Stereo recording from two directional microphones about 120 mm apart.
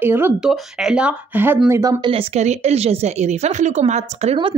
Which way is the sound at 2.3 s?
65° right (ahead or behind).